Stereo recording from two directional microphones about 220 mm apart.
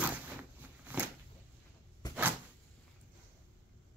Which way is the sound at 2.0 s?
20° left (ahead or behind).